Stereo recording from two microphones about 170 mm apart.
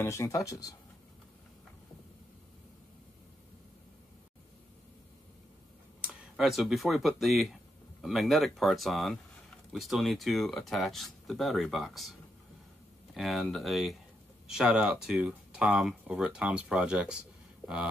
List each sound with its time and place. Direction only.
0.0 s speech: 15° left (ahead or behind)
5.9 s speech: 5° right (ahead or behind)